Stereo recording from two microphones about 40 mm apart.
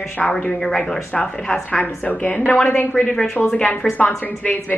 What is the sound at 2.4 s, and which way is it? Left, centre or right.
A woman's voice, left.